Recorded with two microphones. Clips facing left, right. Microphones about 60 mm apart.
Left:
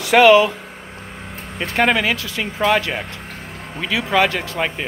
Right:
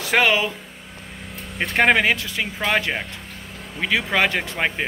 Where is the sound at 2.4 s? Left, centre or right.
Centre.